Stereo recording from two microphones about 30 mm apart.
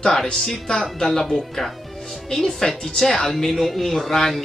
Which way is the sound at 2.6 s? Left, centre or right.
Left.